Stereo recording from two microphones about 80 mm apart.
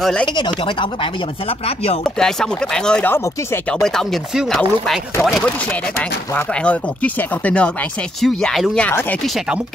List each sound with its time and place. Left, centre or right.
0.0 s speech: centre
2.1 s speech: centre
4.5 s chopping: centre
5.9 s speech: centre
8.2 s chopping: centre